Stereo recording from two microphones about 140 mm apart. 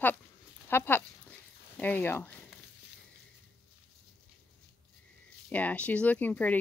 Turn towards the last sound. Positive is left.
turn(degrees=10)  # may be behind; listen again after turning